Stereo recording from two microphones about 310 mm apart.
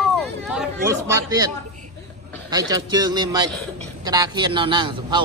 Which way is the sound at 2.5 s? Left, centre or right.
Centre.